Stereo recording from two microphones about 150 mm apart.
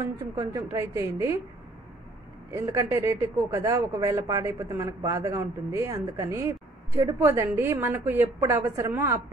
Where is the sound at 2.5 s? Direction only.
20° right (ahead or behind).